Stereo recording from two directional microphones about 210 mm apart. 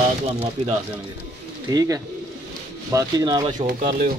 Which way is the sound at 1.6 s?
15° right (ahead or behind).